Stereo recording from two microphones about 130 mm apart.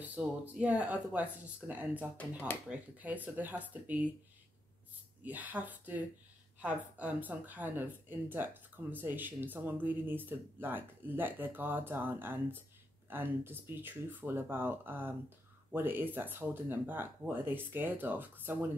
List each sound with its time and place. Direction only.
0.0 s speech: 10° right (ahead or behind)
5.2 s speech: 10° right (ahead or behind)